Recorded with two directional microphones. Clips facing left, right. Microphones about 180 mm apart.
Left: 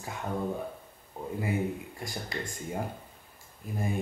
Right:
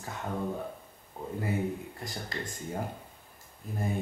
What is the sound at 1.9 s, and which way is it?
Speech, 10° left (ahead or behind).